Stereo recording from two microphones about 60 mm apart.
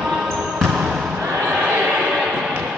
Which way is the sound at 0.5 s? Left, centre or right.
Centre.